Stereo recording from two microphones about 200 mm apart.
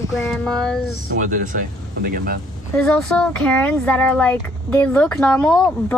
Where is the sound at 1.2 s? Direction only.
40° right (ahead or behind).